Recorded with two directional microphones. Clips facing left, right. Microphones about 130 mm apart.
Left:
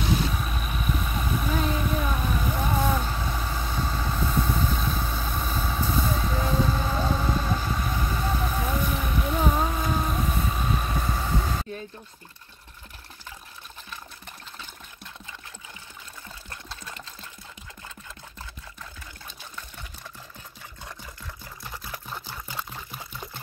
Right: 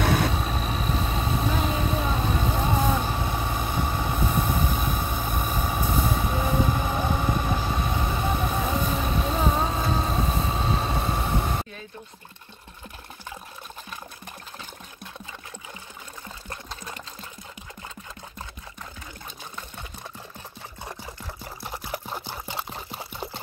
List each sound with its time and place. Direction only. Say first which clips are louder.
0.0 s vehicle: right 3 dB; 60° right (ahead or behind)
0.3 s vehicle: right 4 dB; 30° right (ahead or behind)
20.8 s camera: right 4 dB; 25° right (ahead or behind)
21.6 s pour: right 5 dB; 25° right (ahead or behind)